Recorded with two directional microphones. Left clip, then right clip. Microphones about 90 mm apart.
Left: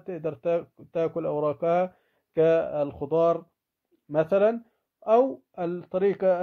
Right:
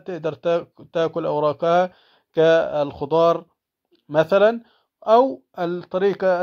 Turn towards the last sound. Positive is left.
turn(degrees=-20)  # may be behind; listen again after turning